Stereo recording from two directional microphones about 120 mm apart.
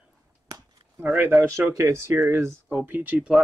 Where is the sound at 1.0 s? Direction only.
15° right (ahead or behind).